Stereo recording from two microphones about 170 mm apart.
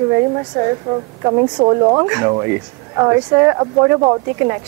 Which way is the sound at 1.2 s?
25° right (ahead or behind).